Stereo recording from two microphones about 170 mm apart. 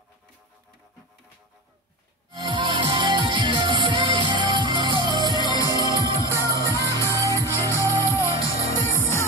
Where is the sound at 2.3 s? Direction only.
30° right (ahead or behind).